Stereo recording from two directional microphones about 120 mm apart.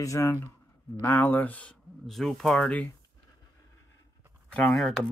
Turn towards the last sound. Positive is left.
turn(degrees=5)  # may be behind; listen again after turning